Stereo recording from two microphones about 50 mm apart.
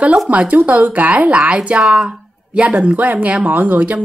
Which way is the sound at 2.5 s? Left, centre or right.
Right.